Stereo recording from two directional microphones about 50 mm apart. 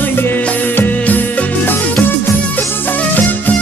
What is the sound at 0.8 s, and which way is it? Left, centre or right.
Music, left.